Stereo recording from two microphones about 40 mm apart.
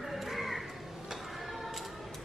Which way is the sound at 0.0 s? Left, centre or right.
Centre.